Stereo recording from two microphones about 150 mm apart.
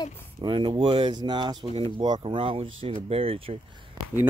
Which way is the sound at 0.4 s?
35° right (ahead or behind).